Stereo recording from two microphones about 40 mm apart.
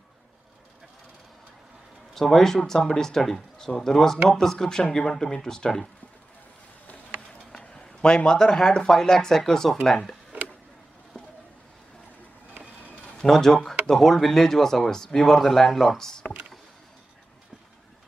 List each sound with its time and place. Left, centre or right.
2.1 s speech: centre
7.5 s speech: centre
11.1 s vehicle: left
13.3 s speech: centre
16.0 s speech: centre